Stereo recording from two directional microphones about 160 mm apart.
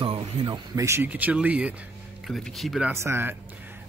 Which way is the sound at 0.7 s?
15° right (ahead or behind).